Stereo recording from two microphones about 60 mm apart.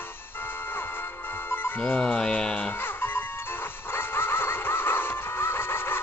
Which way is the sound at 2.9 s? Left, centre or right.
Left.